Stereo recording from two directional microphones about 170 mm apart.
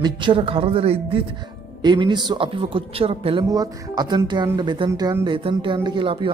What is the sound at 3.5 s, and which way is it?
Speech, 20° right (ahead or behind).